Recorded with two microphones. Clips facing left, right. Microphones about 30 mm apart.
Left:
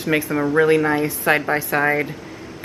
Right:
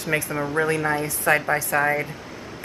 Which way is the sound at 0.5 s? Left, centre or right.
Left.